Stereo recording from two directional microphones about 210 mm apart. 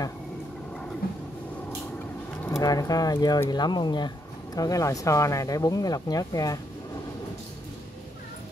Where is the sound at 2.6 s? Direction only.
15° left (ahead or behind).